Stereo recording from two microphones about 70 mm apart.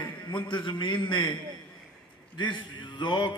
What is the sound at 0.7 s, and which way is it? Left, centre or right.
Speech, left.